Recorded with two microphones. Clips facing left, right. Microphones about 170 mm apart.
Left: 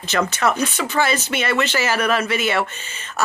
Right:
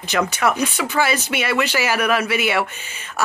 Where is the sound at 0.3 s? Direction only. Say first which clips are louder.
Even; 10° right (ahead or behind).